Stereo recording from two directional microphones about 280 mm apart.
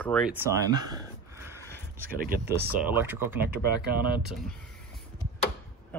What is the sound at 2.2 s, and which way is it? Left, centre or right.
Speech, right.